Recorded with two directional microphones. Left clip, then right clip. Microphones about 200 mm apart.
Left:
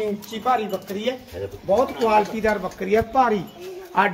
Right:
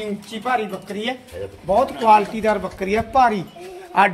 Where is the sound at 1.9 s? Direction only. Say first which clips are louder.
Right 4 dB; 50° right (ahead or behind).